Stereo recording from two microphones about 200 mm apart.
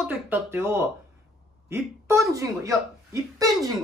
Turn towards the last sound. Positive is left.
turn(degrees=-15)  # may be behind; listen again after turning